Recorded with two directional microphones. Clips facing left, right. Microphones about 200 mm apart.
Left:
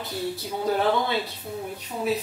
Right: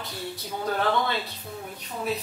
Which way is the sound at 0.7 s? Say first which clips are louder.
Left 2 dB; 10° left (ahead or behind).